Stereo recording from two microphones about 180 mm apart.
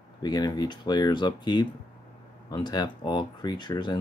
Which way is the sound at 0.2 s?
20° left (ahead or behind).